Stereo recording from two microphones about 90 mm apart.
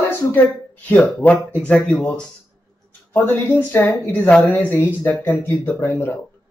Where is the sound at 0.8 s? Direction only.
20° left (ahead or behind).